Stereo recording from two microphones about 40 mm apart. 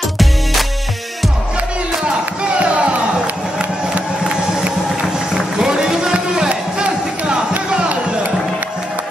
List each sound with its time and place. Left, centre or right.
0.2 s music: centre
2.6 s a sound: right
5.6 s music: centre